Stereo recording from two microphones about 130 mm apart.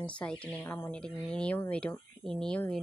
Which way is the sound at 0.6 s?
20° left (ahead or behind).